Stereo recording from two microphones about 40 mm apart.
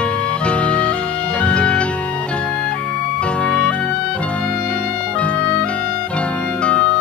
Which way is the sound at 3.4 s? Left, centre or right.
Left.